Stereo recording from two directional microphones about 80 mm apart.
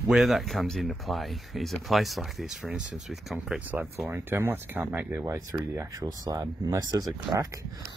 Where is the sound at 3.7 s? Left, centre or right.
Right.